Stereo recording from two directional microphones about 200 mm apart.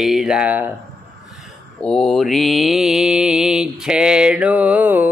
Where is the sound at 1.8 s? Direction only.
Centre (ahead or behind).